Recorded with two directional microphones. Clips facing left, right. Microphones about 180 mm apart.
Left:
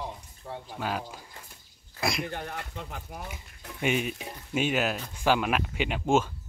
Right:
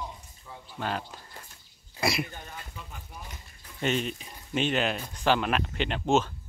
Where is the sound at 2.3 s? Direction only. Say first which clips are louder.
Left 7 dB; 70° left (ahead or behind).